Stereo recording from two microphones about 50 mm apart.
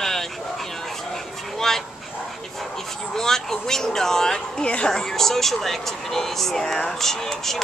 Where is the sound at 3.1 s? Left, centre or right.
Centre.